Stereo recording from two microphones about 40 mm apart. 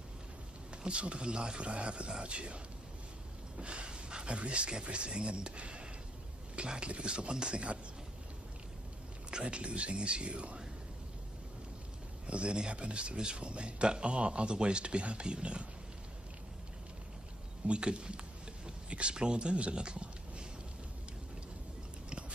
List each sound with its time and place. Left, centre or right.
0.8 s speech: right
9.3 s speech: right
12.3 s speech: right
17.6 s speech: right